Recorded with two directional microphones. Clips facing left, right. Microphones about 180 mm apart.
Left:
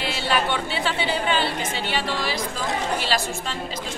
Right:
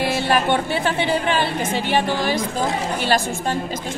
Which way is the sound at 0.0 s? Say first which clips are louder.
Right 5 dB; 50° right (ahead or behind).